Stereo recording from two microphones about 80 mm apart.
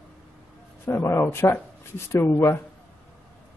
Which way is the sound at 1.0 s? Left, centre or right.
Left.